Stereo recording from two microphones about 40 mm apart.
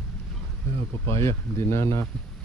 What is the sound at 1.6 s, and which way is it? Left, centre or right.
Speech, left.